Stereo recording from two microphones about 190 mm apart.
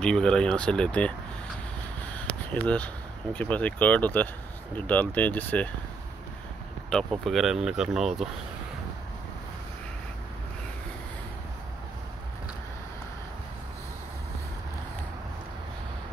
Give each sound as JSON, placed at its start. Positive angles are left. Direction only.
{"t": 0.0, "sound": "speech", "side_deg": 5}
{"t": 2.5, "sound": "speech", "side_deg": 10}
{"t": 6.9, "sound": "speech", "side_deg": 5}